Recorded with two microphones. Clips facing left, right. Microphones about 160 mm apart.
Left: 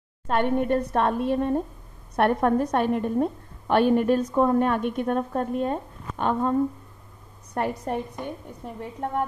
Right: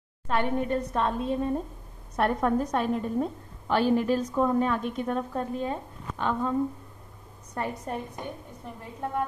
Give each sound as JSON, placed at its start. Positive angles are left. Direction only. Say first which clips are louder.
{"t": 0.3, "sound": "a woman's voice", "louder": "left 4 dB", "side_deg": 60}
{"t": 7.5, "sound": "a woman's voice", "louder": "left 5 dB", "side_deg": 70}